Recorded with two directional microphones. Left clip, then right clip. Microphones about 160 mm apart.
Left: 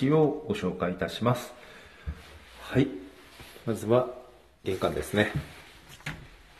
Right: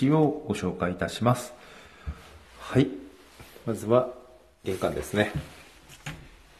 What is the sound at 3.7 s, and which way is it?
Speech, centre (ahead or behind).